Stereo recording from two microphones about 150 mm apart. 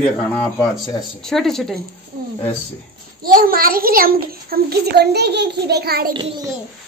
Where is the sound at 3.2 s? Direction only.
70° right (ahead or behind); by 6.1 s 90° right.